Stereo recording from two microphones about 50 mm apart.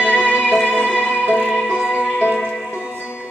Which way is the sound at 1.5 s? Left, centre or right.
Centre.